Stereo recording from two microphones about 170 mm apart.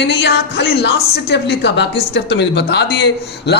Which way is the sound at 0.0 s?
80° left.